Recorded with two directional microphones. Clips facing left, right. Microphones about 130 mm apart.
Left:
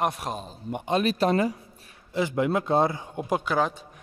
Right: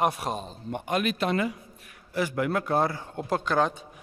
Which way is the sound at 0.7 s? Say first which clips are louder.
Left 2 dB; 20° left (ahead or behind).